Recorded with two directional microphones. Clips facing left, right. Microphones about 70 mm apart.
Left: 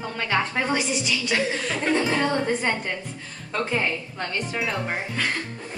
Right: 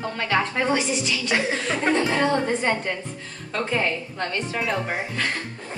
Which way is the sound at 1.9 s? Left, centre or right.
Centre.